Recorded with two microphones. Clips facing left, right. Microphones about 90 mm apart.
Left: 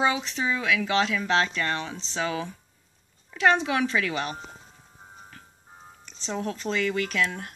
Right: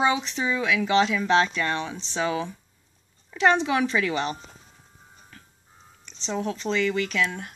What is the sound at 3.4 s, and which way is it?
Speech, 20° right (ahead or behind).